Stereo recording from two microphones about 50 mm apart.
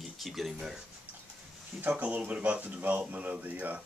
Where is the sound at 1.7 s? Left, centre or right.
Right.